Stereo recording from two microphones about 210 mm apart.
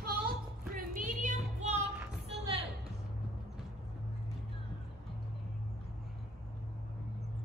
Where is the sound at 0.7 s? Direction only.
40° right (ahead or behind).